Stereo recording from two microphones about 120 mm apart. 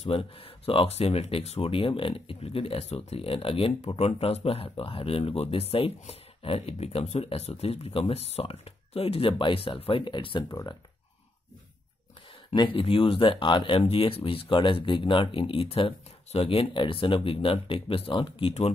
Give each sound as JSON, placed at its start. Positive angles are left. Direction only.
{"t": 0.1, "sound": "speech", "side_deg": 50}
{"t": 12.5, "sound": "speech", "side_deg": 45}